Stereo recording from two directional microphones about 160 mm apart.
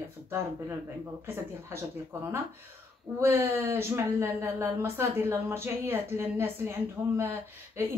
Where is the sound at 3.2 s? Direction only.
15° right (ahead or behind).